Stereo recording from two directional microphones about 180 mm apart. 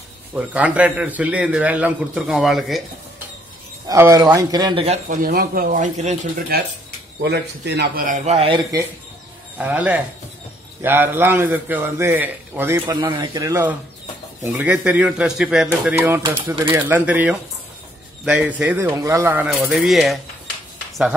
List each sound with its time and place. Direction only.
0.3 s a man's voice: 5° right (ahead or behind)
3.8 s speech: 15° right (ahead or behind)
5.0 s a man's voice: 55° right (ahead or behind)
7.2 s a man's voice: 70° right (ahead or behind); by 8.8 s 25° right (ahead or behind)
9.6 s a man's voice: 10° right (ahead or behind)